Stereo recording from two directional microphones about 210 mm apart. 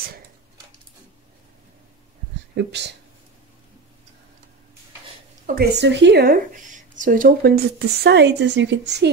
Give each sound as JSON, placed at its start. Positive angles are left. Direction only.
{"t": 2.5, "sound": "speech", "side_deg": -55}
{"t": 5.5, "sound": "a woman's voice", "side_deg": -50}